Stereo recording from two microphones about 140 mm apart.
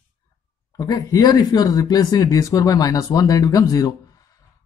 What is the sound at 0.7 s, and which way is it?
Speech, 25° left (ahead or behind).